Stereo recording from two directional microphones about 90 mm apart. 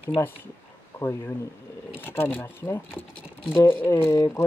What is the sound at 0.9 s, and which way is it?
Speech, 20° left (ahead or behind).